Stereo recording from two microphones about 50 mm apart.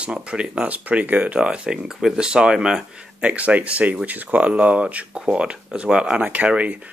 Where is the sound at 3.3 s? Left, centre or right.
Right.